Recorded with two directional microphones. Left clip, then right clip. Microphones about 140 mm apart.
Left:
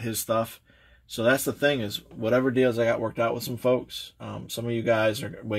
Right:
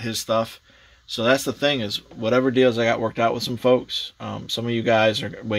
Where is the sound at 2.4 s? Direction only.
30° right (ahead or behind).